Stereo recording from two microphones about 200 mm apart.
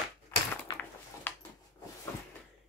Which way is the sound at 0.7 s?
20° left (ahead or behind).